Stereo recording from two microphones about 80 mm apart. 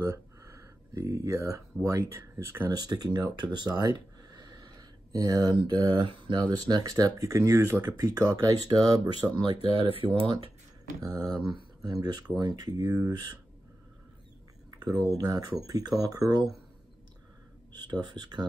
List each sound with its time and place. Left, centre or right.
0.0 s speech: right
2.7 s speech: right
6.5 s speech: right
11.0 s speech: right
15.0 s speech: right
17.7 s speech: right